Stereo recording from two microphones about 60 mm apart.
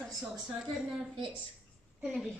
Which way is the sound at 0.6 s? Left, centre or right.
Centre.